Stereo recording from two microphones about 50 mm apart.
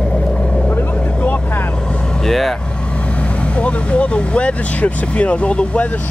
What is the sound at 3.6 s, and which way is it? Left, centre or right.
Speech, left.